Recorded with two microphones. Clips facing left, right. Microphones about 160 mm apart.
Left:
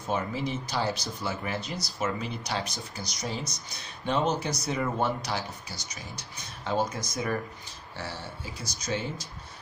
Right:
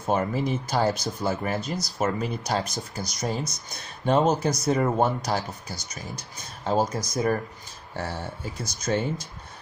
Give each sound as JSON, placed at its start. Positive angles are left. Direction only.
{"t": 0.0, "sound": "speech", "side_deg": -50}
{"t": 7.9, "sound": "speech", "side_deg": -50}